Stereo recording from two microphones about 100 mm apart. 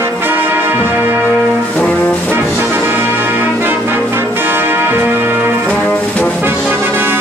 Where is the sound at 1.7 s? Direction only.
15° left (ahead or behind).